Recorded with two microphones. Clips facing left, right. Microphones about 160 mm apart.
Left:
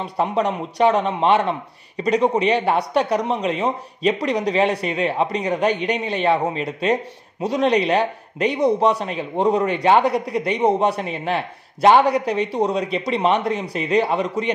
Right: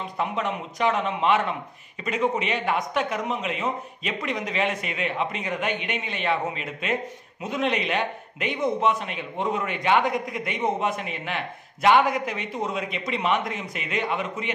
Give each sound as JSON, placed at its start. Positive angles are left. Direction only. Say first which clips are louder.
{"t": 0.0, "sound": "speech", "louder": "left 7 dB", "side_deg": 35}